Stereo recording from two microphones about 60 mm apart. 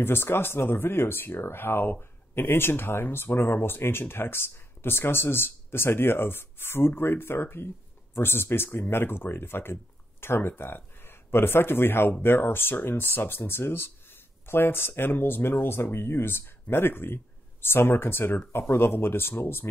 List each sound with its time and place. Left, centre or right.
0.0 s speech: left